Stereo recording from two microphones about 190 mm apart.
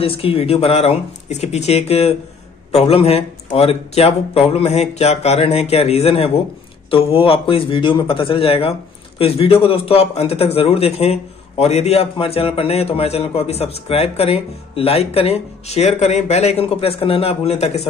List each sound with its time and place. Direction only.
0.0 s a man's voice: 30° left (ahead or behind)